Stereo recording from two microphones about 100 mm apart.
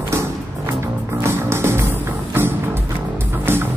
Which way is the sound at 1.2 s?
25° right (ahead or behind).